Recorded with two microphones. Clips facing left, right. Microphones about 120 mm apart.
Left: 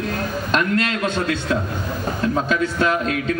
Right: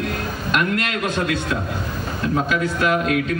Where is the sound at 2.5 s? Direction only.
30° left (ahead or behind).